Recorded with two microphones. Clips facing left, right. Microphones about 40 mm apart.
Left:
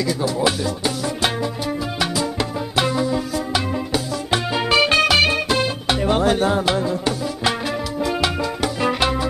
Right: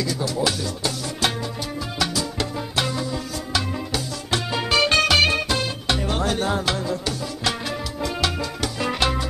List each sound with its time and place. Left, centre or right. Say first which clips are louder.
0.0 s music: left 4 dB; left; by 5.4 s centre
5.5 s music: left 4 dB; centre